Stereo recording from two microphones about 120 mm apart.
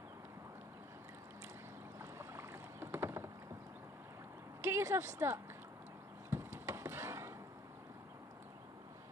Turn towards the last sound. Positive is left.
turn(degrees=-20)  # may be behind; listen again after turning